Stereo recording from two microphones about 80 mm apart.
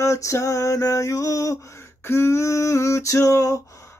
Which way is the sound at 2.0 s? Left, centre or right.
Left.